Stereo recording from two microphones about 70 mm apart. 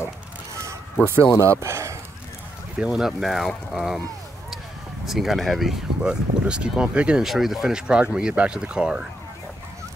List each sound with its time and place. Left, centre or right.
1.0 s speech: right
2.8 s speech: centre
5.0 s speech: centre
6.4 s speech: centre
7.2 s speech: centre